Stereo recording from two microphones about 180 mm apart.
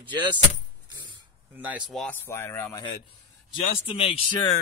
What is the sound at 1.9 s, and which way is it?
Speech, 10° left (ahead or behind).